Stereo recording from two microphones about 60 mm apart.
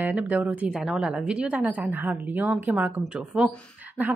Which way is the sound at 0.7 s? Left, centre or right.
Centre.